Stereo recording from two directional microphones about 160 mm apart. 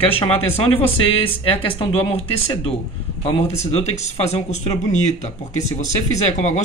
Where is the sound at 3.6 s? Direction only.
45° left (ahead or behind).